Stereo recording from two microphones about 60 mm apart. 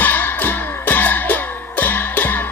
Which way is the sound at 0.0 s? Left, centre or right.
Left.